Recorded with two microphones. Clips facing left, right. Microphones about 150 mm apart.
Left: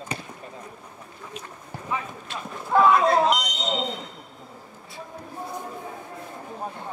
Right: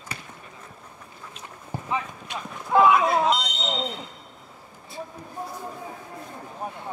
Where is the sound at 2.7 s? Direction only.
5° right (ahead or behind).